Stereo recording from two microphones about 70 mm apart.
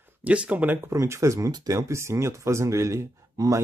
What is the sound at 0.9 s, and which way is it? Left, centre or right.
Speech, right.